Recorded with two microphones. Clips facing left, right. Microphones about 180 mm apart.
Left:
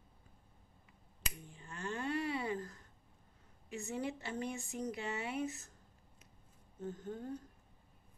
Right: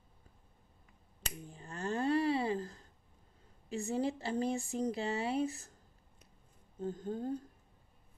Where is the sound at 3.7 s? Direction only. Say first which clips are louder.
Right 6 dB; 35° right (ahead or behind).